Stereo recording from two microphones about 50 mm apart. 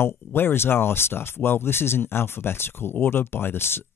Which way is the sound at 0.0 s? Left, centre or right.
Left.